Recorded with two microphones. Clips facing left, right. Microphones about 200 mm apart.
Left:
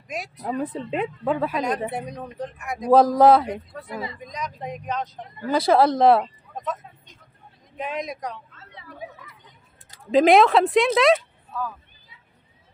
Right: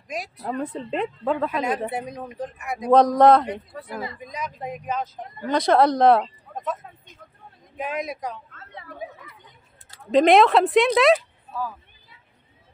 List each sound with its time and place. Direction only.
0.1 s speech: centre (ahead or behind)
8.5 s a sound: 55° right (ahead or behind)
10.1 s speech: centre (ahead or behind)